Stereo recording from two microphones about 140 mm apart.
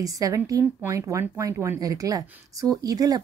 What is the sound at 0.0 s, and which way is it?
A woman's voice, 25° right (ahead or behind).